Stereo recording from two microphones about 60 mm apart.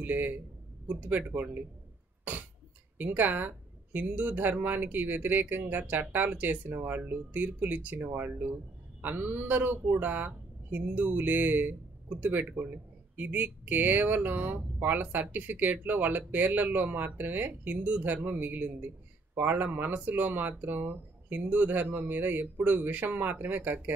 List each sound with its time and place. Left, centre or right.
0.0 s speech: right
3.0 s speech: right